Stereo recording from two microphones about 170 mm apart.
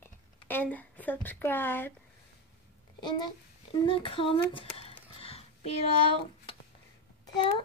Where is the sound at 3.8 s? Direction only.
30° left (ahead or behind).